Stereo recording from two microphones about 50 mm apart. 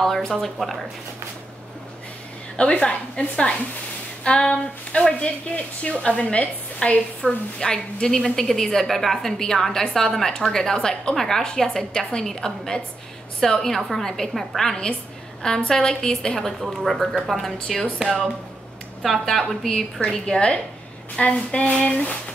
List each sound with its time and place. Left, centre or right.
0.0 s speech: centre
2.5 s a woman's voice: left
7.2 s a woman's voice: centre
19.0 s speech: centre
20.0 s a woman's voice: centre